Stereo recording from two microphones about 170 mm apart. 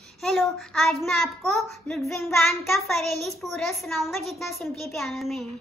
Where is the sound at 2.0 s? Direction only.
15° left (ahead or behind).